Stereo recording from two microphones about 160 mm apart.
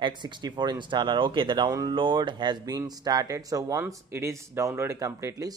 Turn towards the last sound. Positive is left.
turn(degrees=-20)  # may be behind; listen again after turning